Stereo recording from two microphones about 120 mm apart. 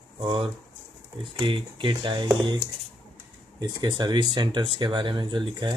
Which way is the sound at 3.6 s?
35° right (ahead or behind).